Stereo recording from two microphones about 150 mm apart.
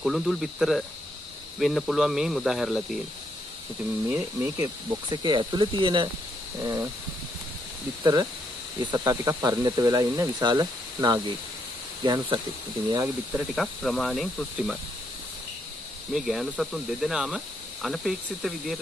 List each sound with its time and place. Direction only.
0.0 s speech: centre (ahead or behind)
4.1 s speech: 10° right (ahead or behind)
5.1 s speech: 30° right (ahead or behind)
6.6 s speech: 20° right (ahead or behind)
8.0 s speech: 25° right (ahead or behind)
12.9 s speech: 15° right (ahead or behind)
13.6 s speech: centre (ahead or behind)
16.1 s speech: centre (ahead or behind)